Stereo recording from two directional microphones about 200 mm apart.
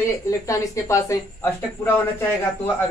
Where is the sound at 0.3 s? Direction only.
15° left (ahead or behind).